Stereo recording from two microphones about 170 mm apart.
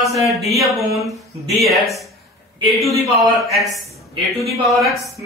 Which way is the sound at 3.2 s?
Centre (ahead or behind).